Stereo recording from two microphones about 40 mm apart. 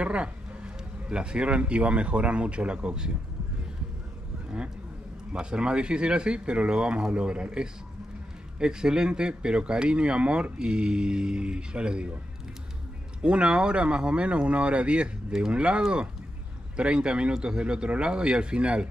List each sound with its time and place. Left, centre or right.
0.0 s speech: right
5.3 s speech: right
13.2 s speech: right